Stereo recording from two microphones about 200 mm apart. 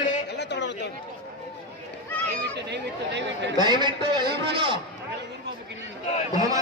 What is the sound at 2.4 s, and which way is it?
Speech, 60° right (ahead or behind).